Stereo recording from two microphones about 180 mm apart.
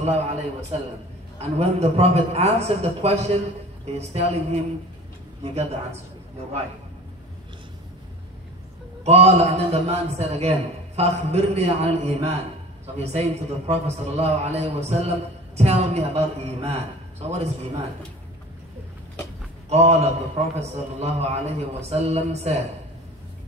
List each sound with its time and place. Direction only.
0.0 s a man's voice: 35° right (ahead or behind)
9.0 s a man's voice: 35° right (ahead or behind)
19.7 s a man's voice: 35° right (ahead or behind)